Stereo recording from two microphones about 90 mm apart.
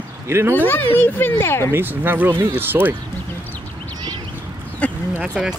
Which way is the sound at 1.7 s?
25° right (ahead or behind).